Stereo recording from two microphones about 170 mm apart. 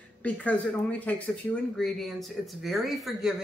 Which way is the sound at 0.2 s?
10° left (ahead or behind).